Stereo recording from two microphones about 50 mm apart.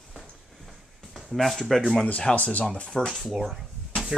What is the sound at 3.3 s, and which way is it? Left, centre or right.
Speech, centre.